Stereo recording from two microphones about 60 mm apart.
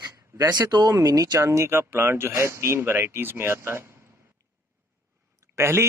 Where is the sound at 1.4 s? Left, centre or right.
Right.